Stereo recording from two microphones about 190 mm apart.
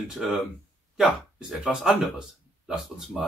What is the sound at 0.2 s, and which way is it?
Speech, centre (ahead or behind).